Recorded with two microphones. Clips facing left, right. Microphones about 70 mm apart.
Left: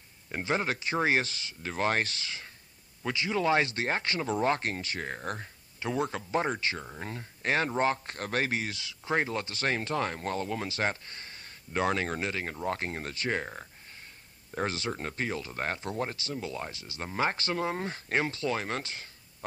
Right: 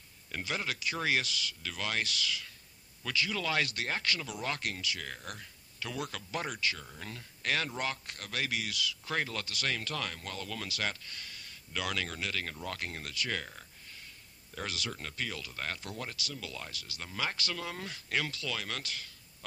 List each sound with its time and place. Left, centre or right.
0.3 s speech: left